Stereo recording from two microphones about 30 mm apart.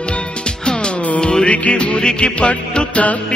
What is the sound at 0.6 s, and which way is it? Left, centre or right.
Music, left.